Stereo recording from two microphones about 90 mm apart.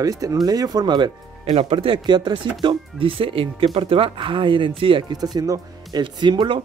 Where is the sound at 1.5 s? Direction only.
80° right.